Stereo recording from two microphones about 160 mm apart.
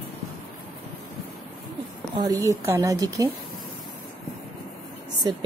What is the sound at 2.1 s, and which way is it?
A woman's voice, 25° right (ahead or behind).